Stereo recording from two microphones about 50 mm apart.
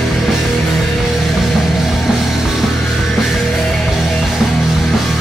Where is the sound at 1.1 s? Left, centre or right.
Centre.